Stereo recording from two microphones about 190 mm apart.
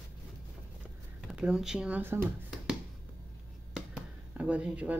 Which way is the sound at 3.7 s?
5° right (ahead or behind).